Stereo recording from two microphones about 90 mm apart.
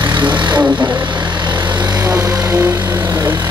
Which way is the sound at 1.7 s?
20° right (ahead or behind).